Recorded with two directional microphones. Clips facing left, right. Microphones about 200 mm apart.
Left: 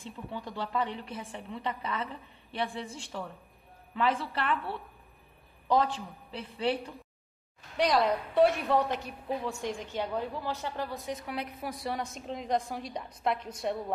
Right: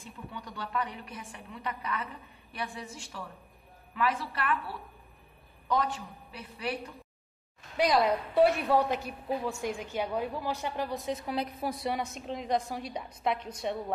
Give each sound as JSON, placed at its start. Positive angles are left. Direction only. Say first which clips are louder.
{"t": 0.0, "sound": "a woman's voice", "louder": "left 4 dB", "side_deg": 25}
{"t": 7.7, "sound": "a woman's voice", "louder": "right 1 dB", "side_deg": -5}
{"t": 11.2, "sound": "a woman's voice", "louder": "right 4 dB", "side_deg": -30}
{"t": 12.0, "sound": "a woman's voice", "louder": "right 1 dB", "side_deg": 0}